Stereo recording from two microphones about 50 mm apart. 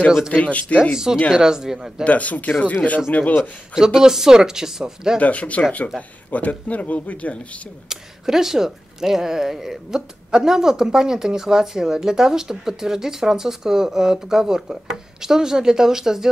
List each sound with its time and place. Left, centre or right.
0.3 s speech: left
0.9 s speech: centre
2.0 s speech: left
3.7 s speech: centre
5.2 s speech: left
7.9 s speech: centre